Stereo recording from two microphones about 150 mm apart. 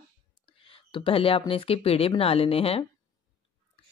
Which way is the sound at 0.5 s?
35° left (ahead or behind).